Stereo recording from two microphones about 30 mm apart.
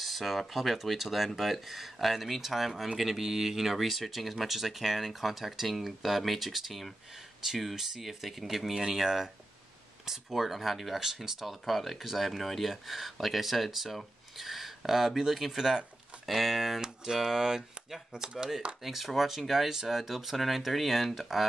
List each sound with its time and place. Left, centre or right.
0.0 s speech: centre
11.0 s speech: centre
16.8 s speech: centre